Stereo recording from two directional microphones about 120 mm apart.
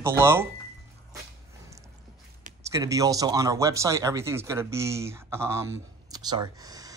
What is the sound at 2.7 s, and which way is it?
Speech, 30° right (ahead or behind).